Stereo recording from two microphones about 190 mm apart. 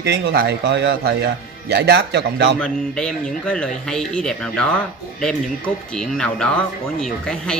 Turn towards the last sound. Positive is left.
turn(degrees=5)  # may be behind; listen again after turning